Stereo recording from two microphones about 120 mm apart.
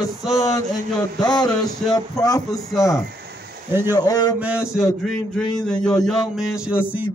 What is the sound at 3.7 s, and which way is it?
Speech, 20° right (ahead or behind).